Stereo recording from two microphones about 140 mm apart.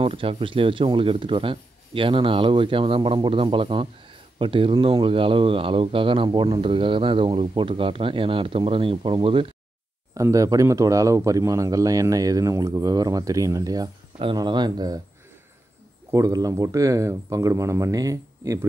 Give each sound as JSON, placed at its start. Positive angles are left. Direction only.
{"t": 0.0, "sound": "speech", "side_deg": -40}
{"t": 10.1, "sound": "speech", "side_deg": -25}
{"t": 14.1, "sound": "speech", "side_deg": -35}
{"t": 16.1, "sound": "speech", "side_deg": -25}